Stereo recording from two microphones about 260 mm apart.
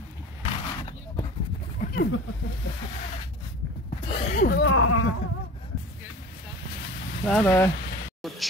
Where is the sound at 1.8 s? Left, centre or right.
Left.